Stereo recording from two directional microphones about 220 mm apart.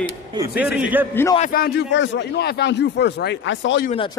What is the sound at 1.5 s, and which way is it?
A man's voice, 45° left (ahead or behind).